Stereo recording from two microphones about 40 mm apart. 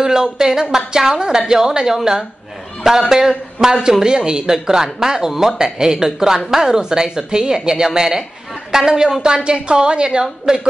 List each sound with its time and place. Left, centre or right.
0.0 s a woman's voice: centre